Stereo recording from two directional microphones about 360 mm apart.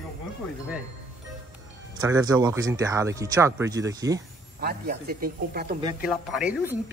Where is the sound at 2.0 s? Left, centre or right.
Centre.